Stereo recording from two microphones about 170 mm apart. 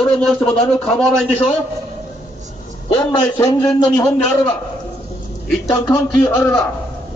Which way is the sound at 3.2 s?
20° left (ahead or behind).